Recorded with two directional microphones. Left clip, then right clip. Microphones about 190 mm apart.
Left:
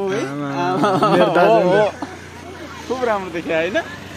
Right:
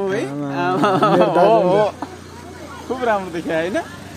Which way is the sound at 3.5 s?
75° right (ahead or behind).